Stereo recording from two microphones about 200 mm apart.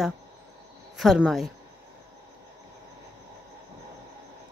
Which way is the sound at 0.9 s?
Centre (ahead or behind).